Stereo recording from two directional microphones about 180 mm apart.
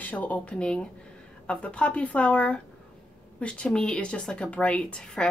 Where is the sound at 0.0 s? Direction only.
10° left (ahead or behind).